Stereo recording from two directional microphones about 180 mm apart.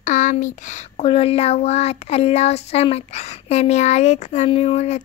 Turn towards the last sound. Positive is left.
turn(degrees=35)  # may be behind; listen again after turning